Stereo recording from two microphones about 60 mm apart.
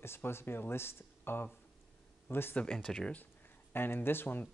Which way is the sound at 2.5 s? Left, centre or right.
Centre.